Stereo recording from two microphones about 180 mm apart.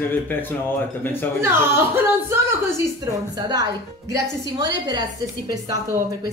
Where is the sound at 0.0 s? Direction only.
10° left (ahead or behind).